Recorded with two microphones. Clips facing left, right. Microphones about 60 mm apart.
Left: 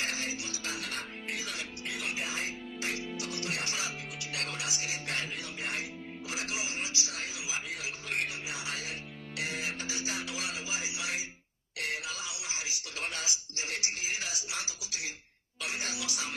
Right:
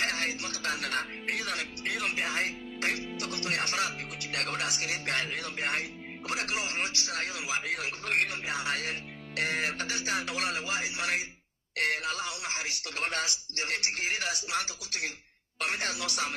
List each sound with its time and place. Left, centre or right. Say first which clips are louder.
0.0 s speech: right 4 dB; right